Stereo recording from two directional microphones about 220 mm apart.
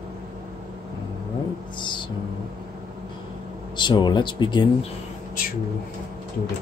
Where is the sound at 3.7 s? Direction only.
20° left (ahead or behind).